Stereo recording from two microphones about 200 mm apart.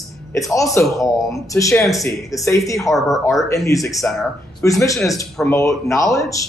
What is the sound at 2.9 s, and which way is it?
Speech, centre (ahead or behind).